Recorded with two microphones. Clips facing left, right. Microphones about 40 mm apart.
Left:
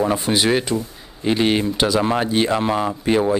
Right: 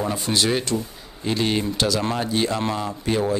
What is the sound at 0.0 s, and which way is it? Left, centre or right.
Speech, left.